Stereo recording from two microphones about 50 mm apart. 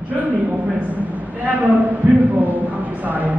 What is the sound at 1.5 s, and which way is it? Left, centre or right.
A man's voice, right.